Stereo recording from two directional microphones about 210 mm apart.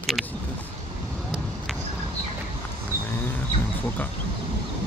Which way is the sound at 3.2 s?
10° left (ahead or behind).